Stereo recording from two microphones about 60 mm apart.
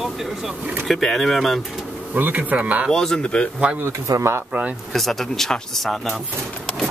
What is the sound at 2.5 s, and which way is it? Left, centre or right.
Speech, right.